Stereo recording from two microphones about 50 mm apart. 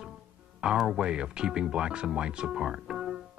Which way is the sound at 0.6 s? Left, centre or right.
Centre.